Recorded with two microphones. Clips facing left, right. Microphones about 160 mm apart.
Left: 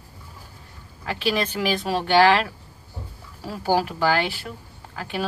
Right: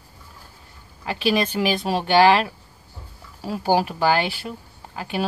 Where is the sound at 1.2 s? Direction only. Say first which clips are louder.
Right 3 dB; 15° right (ahead or behind).